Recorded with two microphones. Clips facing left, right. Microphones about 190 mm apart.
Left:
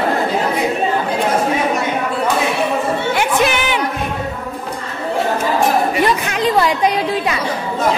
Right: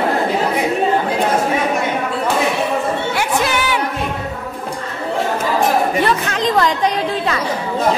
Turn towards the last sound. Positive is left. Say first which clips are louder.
# left 1 dB
turn(degrees=10)  # may be behind; listen again after turning